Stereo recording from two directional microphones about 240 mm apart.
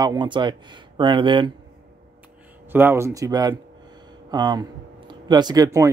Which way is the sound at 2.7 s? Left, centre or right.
Centre.